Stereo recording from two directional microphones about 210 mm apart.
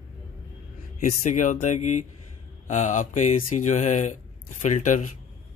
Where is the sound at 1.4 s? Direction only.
35° left (ahead or behind).